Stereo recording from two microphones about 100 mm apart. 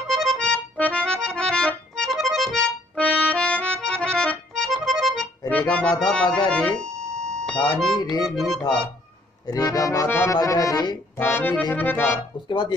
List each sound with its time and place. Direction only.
0.1 s accordion: centre (ahead or behind)
3.0 s accordion: 15° left (ahead or behind)
5.5 s accordion: 10° left (ahead or behind)
6.8 s music: 5° left (ahead or behind)
9.5 s accordion: 40° left (ahead or behind)
10.0 s accordion: 20° left (ahead or behind)
10.3 s accordion: 35° left (ahead or behind)
11.1 s accordion: 20° left (ahead or behind)
12.4 s speech: 50° left (ahead or behind)